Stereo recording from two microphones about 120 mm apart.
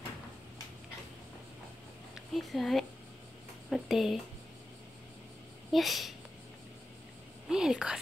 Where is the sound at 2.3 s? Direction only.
Centre (ahead or behind).